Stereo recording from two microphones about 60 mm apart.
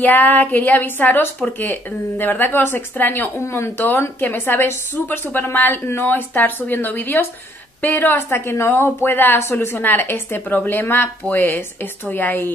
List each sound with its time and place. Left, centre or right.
0.0 s a woman's voice: left
3.3 s speech: left
4.2 s a woman's voice: left